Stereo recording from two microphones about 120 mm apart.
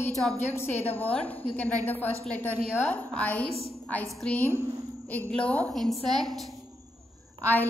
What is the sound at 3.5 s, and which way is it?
Speech, 55° right (ahead or behind).